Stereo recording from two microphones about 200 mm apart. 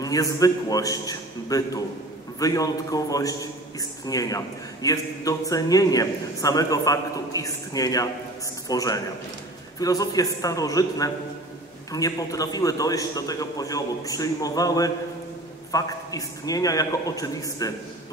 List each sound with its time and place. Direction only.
0.0 s a man's voice: 15° left (ahead or behind)